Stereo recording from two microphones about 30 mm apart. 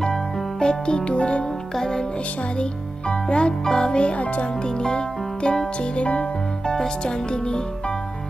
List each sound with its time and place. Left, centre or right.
0.0 s music: left
1.8 s music: centre
3.1 s music: left
4.0 s music: left
4.8 s music: left